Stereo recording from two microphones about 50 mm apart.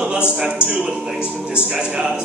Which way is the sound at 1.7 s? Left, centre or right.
Centre.